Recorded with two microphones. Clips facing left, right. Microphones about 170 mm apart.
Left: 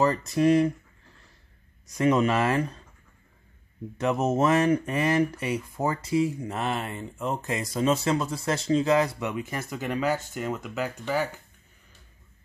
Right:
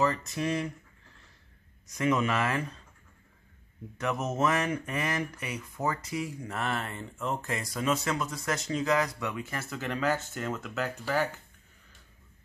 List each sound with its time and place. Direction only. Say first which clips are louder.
0.0 s speech: left 7 dB; 35° left (ahead or behind)
2.0 s speech: left 5 dB; 35° left (ahead or behind)
4.0 s speech: left 5 dB; 30° left (ahead or behind); by 11.4 s 10° left (ahead or behind)